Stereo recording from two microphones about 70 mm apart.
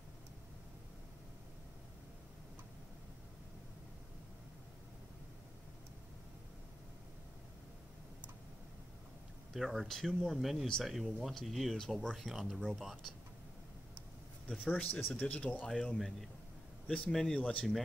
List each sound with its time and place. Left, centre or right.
9.5 s speech: centre
14.5 s speech: centre
14.8 s speech: left
15.7 s speech: centre